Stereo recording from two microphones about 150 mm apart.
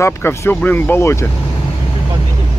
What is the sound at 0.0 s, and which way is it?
Speech, 20° left (ahead or behind).